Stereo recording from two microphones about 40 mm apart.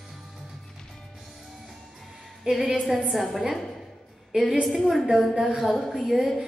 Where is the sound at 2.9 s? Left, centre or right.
Centre.